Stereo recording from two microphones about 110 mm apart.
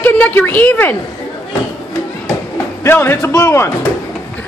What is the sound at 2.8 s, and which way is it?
Speech, 20° left (ahead or behind).